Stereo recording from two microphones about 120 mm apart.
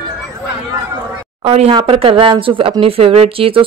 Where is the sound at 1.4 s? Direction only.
55° right (ahead or behind).